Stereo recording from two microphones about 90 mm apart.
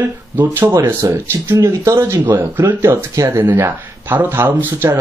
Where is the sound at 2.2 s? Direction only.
25° right (ahead or behind).